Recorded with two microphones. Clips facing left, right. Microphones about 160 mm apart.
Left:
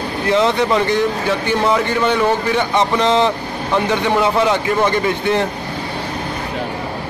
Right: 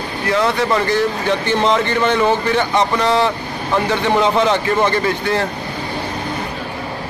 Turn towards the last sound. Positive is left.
turn(degrees=20)  # may be behind; listen again after turning